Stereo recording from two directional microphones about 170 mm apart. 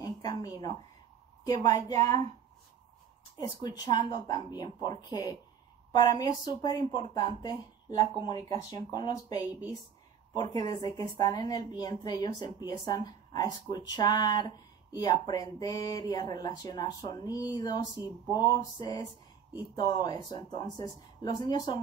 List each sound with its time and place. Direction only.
0.0 s a sound: 20° left (ahead or behind)
1.4 s a woman's voice: 20° left (ahead or behind)
3.3 s a woman's voice: 25° left (ahead or behind)
8.5 s a woman's voice: 25° left (ahead or behind)